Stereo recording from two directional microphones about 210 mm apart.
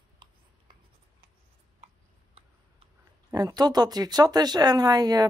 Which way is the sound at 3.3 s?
20° right (ahead or behind).